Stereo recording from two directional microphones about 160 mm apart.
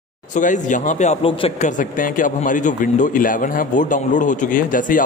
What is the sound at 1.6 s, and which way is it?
Speech, 50° left (ahead or behind).